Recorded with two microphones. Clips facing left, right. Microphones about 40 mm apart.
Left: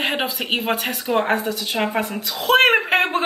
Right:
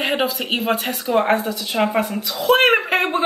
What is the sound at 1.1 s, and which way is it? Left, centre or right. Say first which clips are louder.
Speech: right 2 dB; centre.